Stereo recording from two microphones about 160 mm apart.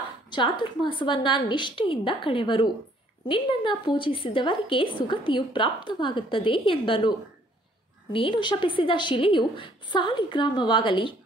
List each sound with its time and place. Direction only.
0.3 s a woman's voice: 30° left (ahead or behind)